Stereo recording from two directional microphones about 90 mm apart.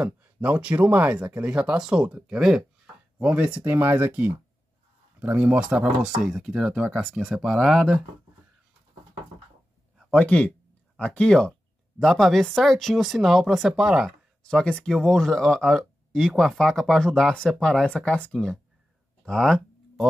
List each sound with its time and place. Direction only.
0.0 s speech: 15° right (ahead or behind)
10.1 s speech: 15° left (ahead or behind); by 14.1 s 5° right (ahead or behind)
14.4 s speech: 10° left (ahead or behind)
19.2 s a sound: 5° left (ahead or behind)